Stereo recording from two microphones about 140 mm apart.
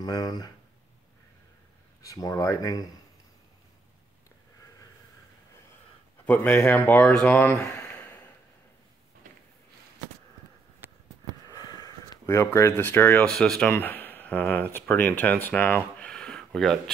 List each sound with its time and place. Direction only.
0.0 s speech: 30° left (ahead or behind)
2.0 s speech: 25° left (ahead or behind)
6.2 s speech: 10° left (ahead or behind)
7.5 s speech: 25° left (ahead or behind)
11.4 s a sound: 30° left (ahead or behind)
13.3 s speech: 5° left (ahead or behind)